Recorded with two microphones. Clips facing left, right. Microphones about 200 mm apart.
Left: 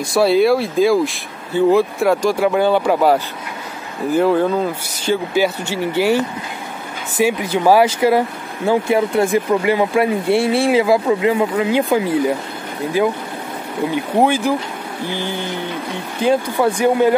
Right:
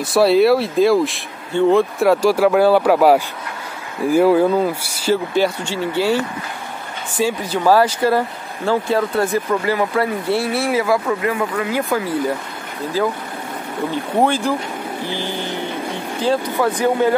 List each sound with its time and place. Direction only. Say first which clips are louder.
0.0 s speech: right 1 dB; centre (ahead or behind)
5.9 s speech: left 2 dB; 20° left (ahead or behind)
7.2 s speech: left 2 dB; 20° left (ahead or behind)